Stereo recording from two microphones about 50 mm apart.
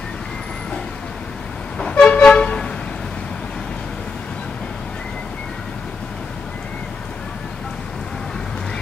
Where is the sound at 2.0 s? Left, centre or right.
Left.